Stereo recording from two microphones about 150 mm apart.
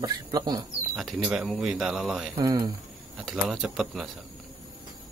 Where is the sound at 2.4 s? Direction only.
25° right (ahead or behind).